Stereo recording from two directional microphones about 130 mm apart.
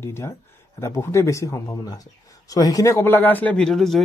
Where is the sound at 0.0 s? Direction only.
20° left (ahead or behind).